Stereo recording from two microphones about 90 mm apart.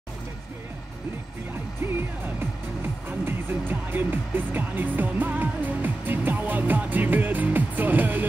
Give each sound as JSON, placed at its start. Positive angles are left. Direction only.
{"t": 1.8, "sound": "music", "side_deg": -25}